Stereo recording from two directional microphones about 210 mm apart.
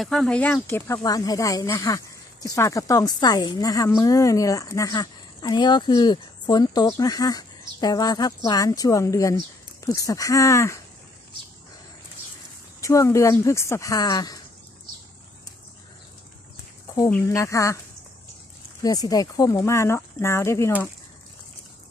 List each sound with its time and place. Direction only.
0.0 s speech: centre (ahead or behind)
12.8 s speech: 15° left (ahead or behind)
17.1 s speech: 15° left (ahead or behind)
18.8 s speech: 15° left (ahead or behind)